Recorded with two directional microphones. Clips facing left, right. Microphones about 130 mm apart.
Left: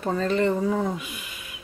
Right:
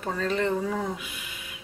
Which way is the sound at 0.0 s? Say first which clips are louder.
Left 4 dB; 35° left (ahead or behind).